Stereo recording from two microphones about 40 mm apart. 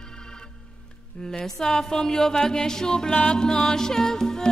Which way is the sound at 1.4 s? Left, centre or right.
Centre.